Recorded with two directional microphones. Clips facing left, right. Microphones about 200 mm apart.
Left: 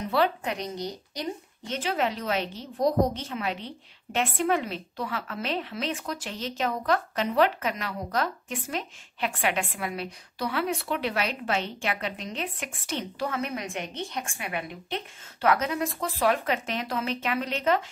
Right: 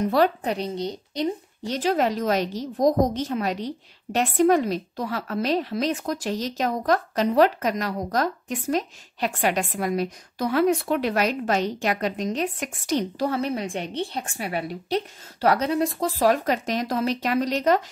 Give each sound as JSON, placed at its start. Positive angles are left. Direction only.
{"t": 0.0, "sound": "a woman's voice", "side_deg": -40}